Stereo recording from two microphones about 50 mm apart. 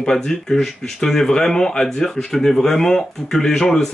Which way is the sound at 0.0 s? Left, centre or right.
Centre.